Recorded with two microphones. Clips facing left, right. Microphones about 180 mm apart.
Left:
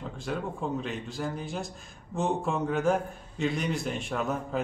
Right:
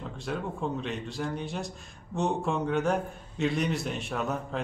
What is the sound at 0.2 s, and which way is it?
A man's voice, centre (ahead or behind).